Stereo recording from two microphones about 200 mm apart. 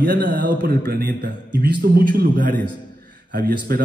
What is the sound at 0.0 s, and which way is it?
A man's voice, 55° right (ahead or behind).